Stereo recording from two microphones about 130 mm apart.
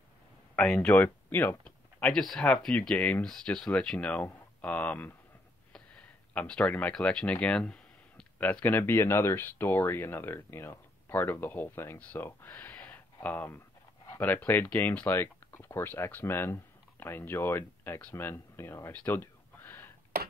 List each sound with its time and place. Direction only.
0.7 s speech: 15° left (ahead or behind)